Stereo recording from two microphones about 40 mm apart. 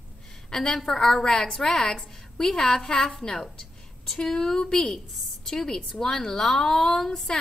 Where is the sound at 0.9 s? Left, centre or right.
Centre.